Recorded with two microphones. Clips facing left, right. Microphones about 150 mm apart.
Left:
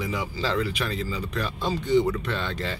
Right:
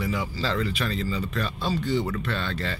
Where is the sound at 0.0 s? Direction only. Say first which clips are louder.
Even; 15° left (ahead or behind).